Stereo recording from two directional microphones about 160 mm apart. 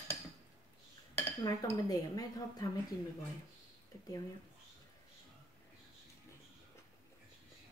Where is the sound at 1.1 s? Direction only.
20° left (ahead or behind).